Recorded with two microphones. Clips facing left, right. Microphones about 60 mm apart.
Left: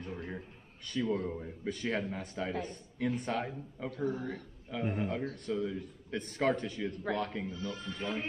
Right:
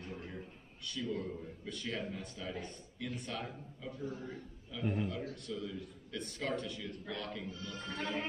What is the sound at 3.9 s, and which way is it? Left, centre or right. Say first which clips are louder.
Speech: left 7 dB; left.